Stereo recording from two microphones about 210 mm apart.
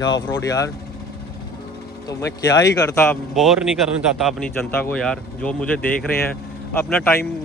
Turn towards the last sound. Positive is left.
turn(degrees=5)  # may be behind; listen again after turning